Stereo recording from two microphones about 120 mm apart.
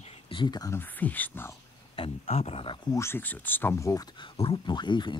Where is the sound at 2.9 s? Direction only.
20° left (ahead or behind); by 5.1 s 40° left (ahead or behind).